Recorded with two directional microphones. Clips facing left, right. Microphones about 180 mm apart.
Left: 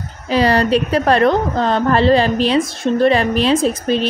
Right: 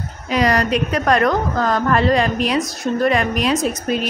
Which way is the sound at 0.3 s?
30° left (ahead or behind).